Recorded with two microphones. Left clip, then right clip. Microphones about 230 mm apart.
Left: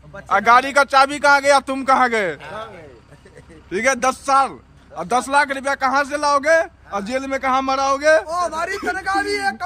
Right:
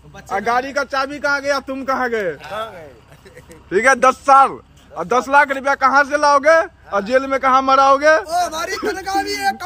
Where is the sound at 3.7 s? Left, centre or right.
Centre.